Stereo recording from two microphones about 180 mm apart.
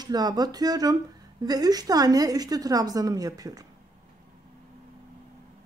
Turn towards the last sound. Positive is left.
turn(degrees=-20)  # may be behind; listen again after turning